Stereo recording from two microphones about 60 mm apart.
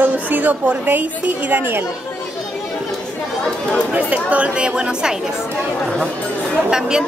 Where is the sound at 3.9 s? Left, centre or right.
Right.